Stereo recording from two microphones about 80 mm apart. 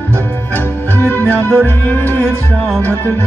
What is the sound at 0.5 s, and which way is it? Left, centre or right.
Music, left.